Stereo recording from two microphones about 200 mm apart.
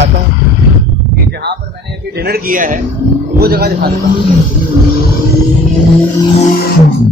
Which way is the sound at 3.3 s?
50° right (ahead or behind).